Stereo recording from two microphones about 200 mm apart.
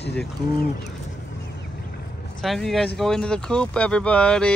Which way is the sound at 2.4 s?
Centre (ahead or behind).